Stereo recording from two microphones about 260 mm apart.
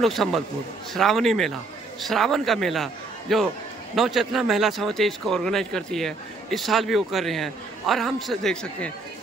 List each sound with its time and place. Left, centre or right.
0.0 s a man's voice: centre